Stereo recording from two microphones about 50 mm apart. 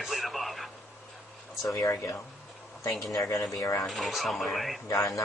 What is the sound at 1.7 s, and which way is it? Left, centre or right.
Speech, left.